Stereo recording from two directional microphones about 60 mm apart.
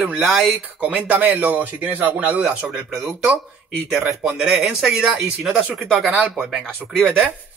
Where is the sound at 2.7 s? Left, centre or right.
Centre.